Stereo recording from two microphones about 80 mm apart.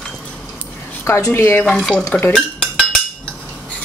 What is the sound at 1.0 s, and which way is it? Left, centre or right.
Speech, left.